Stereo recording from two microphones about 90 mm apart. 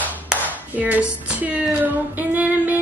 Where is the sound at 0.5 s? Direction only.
15° right (ahead or behind).